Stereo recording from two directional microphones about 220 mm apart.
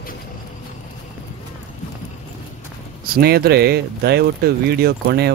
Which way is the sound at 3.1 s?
45° right (ahead or behind).